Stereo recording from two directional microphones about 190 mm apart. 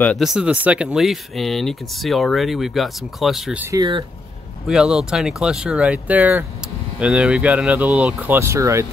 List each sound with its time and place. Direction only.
0.0 s speech: centre (ahead or behind)
3.7 s speech: 20° right (ahead or behind)
4.6 s speech: 5° right (ahead or behind)